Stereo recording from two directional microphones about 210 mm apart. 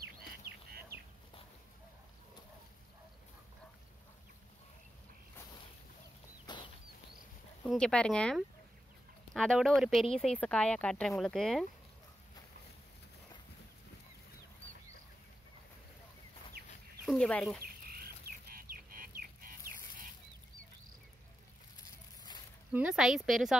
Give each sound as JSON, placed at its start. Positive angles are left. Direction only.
{"t": 6.4, "sound": "bird flight", "side_deg": 20}
{"t": 7.6, "sound": "speech", "side_deg": 5}
{"t": 17.0, "sound": "speech", "side_deg": 0}
{"t": 17.8, "sound": "a sound", "side_deg": -45}
{"t": 22.7, "sound": "speech", "side_deg": -5}